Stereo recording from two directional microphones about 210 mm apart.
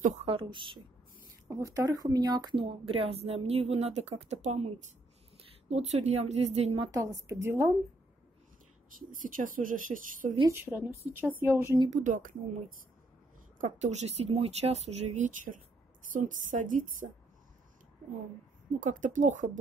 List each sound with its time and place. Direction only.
0.0 s a woman's voice: 30° right (ahead or behind)
6.9 s a woman's voice: 15° right (ahead or behind)
9.1 s speech: 40° right (ahead or behind)
10.5 s a woman's voice: 10° right (ahead or behind)
11.9 s speech: 40° right (ahead or behind)
18.8 s speech: 40° right (ahead or behind)